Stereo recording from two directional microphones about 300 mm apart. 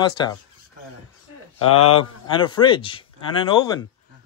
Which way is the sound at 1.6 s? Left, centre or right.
Left.